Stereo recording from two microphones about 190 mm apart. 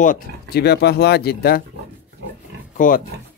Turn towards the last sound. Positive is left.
turn(degrees=45)  # may be behind; listen again after turning